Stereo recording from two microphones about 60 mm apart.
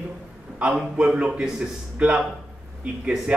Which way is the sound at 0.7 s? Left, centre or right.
Centre.